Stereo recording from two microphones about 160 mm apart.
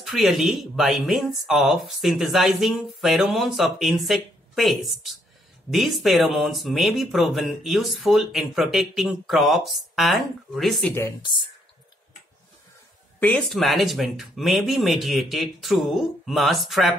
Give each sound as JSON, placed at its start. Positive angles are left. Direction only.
{"t": 0.0, "sound": "speech", "side_deg": 0}
{"t": 10.9, "sound": "speech", "side_deg": 15}
{"t": 13.2, "sound": "speech", "side_deg": 5}